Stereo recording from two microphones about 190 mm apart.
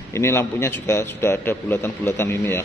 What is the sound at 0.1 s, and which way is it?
A man's voice, 15° left (ahead or behind).